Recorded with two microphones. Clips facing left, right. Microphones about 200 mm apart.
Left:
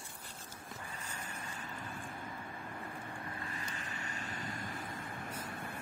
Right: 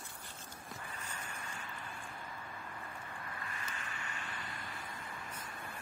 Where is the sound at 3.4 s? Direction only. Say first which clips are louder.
Left 2 dB; 35° left (ahead or behind).